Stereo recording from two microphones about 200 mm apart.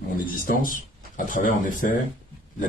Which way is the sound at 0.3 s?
45° left (ahead or behind).